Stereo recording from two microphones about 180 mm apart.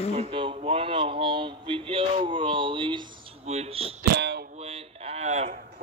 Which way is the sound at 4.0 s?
65° right (ahead or behind).